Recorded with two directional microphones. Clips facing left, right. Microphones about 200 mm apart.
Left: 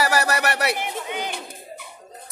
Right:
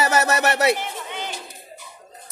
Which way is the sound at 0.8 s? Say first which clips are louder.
Left 3 dB; 15° left (ahead or behind).